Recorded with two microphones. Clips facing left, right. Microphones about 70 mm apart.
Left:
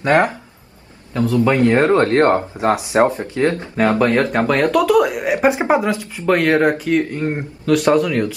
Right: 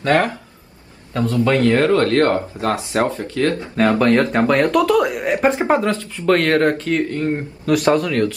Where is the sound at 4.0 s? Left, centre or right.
Centre.